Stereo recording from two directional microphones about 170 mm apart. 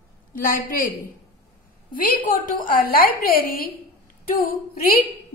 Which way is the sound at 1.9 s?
55° left (ahead or behind).